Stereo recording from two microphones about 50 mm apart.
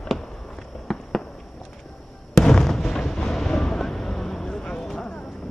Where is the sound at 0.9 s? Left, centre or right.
Centre.